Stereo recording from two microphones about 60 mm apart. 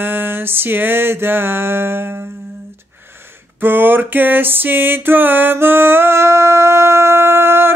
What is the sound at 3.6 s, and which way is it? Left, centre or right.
Music, right.